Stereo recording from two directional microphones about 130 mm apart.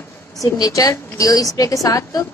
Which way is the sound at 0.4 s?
25° left (ahead or behind).